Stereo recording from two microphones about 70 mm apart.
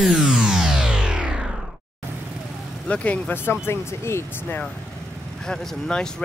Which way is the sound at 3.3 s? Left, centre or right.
Left.